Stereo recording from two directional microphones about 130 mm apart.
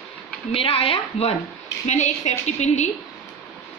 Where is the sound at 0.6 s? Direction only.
45° left (ahead or behind).